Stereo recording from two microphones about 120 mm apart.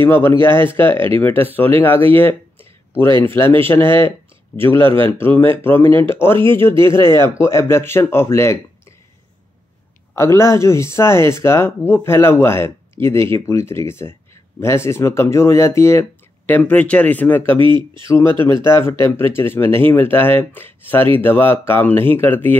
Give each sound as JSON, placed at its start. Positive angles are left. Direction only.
{"t": 0.0, "sound": "speech", "side_deg": 20}
{"t": 2.1, "sound": "a sound", "side_deg": 20}
{"t": 3.2, "sound": "speech", "side_deg": 20}
{"t": 10.1, "sound": "speech", "side_deg": 20}
{"t": 17.6, "sound": "speech", "side_deg": -45}
{"t": 18.4, "sound": "speech", "side_deg": 20}